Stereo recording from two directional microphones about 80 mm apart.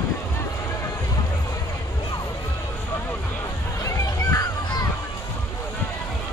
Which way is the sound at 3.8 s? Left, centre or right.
Left.